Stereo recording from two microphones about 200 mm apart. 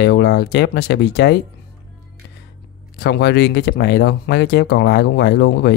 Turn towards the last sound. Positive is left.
turn(degrees=55)  # may be behind; listen again after turning